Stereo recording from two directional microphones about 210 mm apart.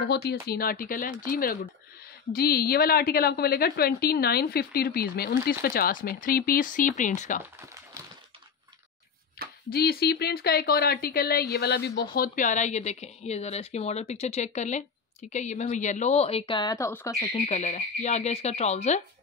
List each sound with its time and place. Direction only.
0.1 s a woman's voice: 50° left (ahead or behind)
9.7 s speech: 45° left (ahead or behind); by 17.3 s 15° left (ahead or behind)
17.3 s speech: 35° left (ahead or behind)